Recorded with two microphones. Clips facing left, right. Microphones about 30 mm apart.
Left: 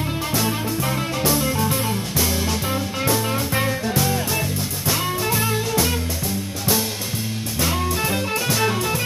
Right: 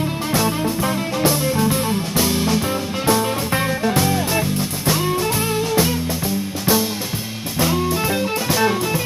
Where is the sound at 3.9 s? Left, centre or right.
Right.